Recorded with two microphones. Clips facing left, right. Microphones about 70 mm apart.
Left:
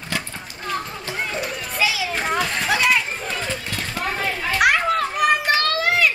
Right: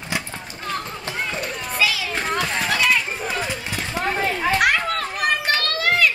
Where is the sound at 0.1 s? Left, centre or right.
Centre.